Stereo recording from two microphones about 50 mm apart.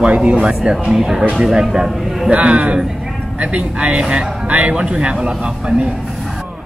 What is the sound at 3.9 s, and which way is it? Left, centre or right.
Speech, centre.